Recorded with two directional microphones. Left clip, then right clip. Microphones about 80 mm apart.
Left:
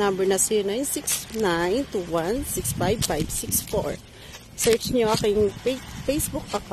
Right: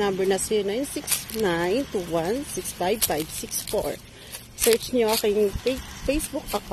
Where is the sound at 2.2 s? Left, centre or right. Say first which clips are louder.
Even; centre.